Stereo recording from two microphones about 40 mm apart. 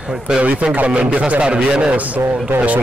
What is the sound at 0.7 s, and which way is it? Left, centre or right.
Speech, right.